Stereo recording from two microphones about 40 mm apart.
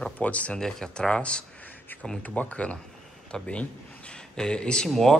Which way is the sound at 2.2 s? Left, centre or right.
Left.